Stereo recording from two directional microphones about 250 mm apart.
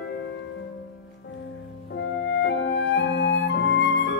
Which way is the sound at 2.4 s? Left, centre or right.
Left.